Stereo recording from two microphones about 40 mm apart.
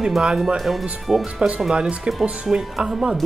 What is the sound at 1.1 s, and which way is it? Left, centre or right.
Speech, right.